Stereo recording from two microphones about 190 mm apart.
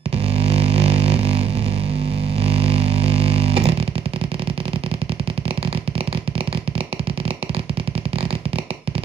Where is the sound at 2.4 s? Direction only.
30° right (ahead or behind).